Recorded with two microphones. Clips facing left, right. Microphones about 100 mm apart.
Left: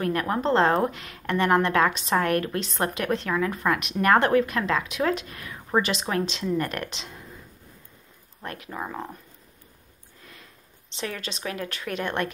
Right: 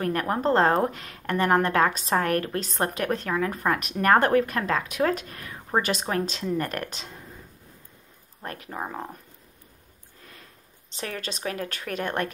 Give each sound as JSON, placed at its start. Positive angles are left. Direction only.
{"t": 0.0, "sound": "a woman's voice", "side_deg": -35}
{"t": 8.4, "sound": "a woman's voice", "side_deg": -35}
{"t": 11.0, "sound": "a woman's voice", "side_deg": -40}